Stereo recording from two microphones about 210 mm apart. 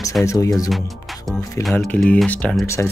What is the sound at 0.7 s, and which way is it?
Music, centre (ahead or behind).